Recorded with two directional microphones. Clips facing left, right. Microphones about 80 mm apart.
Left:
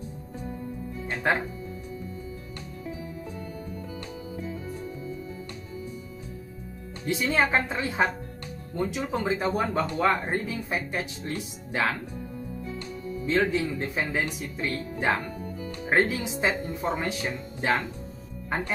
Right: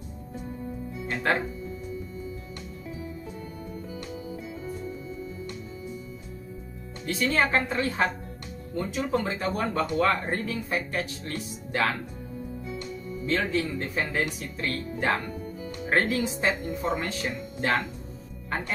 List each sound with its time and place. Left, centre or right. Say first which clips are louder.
1.3 s speech: left 1 dB; centre
7.1 s speech: even; centre
13.3 s speech: left 2 dB; centre